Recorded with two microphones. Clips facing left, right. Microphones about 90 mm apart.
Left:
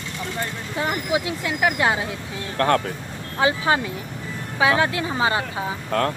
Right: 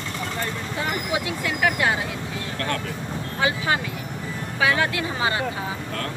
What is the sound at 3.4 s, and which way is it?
Speech, 25° left (ahead or behind).